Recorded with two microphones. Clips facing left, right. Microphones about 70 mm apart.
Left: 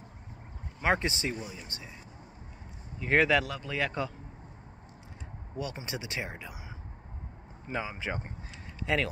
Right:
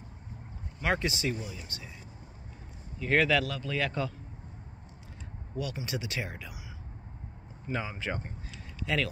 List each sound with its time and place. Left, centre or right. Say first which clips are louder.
0.7 s speech: left 2 dB; left
3.0 s speech: left 1 dB; centre
5.6 s speech: right 2 dB; left
7.6 s speech: even; centre
8.7 s speech: left 1 dB; left